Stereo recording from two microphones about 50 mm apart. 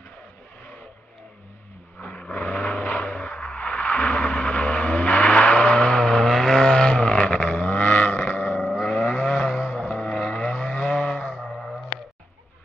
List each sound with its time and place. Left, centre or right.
2.0 s vehicle: left
8.8 s vehicle: centre